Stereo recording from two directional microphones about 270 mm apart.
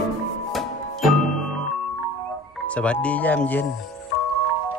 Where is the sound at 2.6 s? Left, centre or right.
Centre.